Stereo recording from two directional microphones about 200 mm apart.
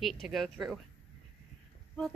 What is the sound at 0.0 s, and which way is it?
Speech, centre (ahead or behind).